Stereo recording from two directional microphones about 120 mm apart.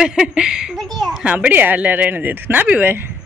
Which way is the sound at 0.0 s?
5° right (ahead or behind).